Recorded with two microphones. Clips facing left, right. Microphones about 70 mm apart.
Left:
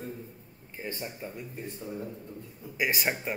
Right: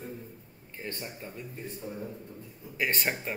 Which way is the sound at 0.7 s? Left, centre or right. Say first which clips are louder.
Left 2 dB; centre.